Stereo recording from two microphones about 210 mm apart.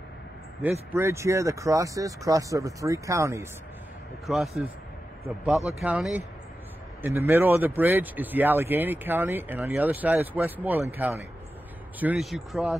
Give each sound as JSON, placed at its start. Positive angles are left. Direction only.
{"t": 0.9, "sound": "speech", "side_deg": -15}
{"t": 4.3, "sound": "speech", "side_deg": 0}
{"t": 5.8, "sound": "speech", "side_deg": -5}